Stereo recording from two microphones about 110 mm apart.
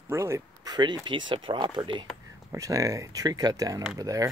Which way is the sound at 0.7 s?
40° right (ahead or behind).